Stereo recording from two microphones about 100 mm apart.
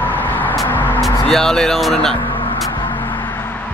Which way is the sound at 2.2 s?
55° left (ahead or behind).